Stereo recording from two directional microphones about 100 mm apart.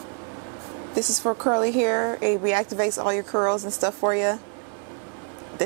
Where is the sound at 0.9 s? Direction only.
15° right (ahead or behind).